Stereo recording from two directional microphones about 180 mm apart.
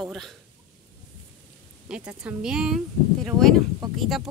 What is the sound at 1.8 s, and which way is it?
Speech, 5° right (ahead or behind).